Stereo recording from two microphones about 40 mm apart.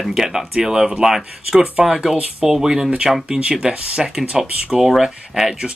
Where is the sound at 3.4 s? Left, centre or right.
Right.